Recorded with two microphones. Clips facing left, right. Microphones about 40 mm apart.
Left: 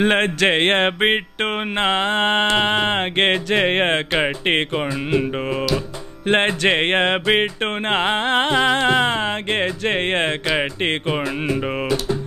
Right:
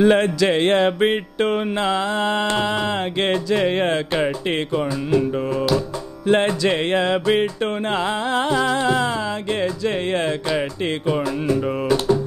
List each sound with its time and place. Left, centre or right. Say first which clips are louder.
0.0 s music: right 1 dB; left
6.2 s music: even; left